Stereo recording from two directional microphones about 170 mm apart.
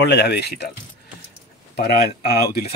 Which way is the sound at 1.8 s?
75° left (ahead or behind).